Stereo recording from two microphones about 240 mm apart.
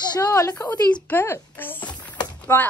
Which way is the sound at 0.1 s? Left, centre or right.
Centre.